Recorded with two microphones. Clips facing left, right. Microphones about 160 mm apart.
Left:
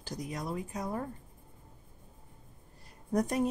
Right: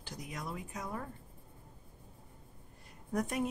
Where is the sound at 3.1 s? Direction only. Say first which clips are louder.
Left 5 dB; 35° left (ahead or behind).